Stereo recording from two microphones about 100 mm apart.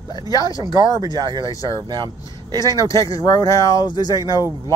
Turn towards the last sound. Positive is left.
turn(degrees=40)  # may be behind; listen again after turning